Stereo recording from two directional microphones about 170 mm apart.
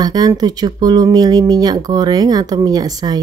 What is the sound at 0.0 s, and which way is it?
Speech, 25° right (ahead or behind).